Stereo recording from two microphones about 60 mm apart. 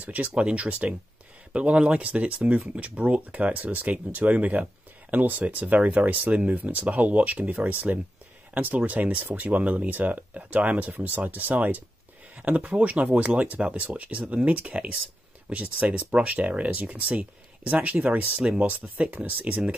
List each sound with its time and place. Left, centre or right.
0.0 s speech: right